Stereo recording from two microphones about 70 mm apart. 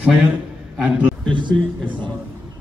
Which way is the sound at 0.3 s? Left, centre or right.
Centre.